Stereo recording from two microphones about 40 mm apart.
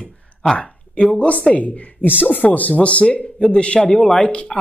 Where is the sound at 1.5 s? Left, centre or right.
Left.